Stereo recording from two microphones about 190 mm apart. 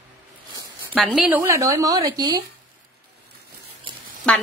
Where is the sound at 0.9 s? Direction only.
Centre (ahead or behind); by 2.4 s 20° right (ahead or behind).